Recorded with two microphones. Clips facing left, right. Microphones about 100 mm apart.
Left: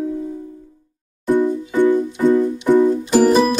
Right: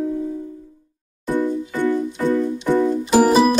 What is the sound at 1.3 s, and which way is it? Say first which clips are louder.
Music: left 4 dB; 15° left (ahead or behind).